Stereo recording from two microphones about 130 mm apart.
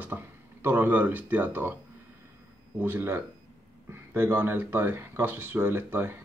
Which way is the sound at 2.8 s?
15° right (ahead or behind).